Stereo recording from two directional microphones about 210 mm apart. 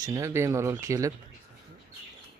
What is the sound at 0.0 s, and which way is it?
Speech, 15° right (ahead or behind).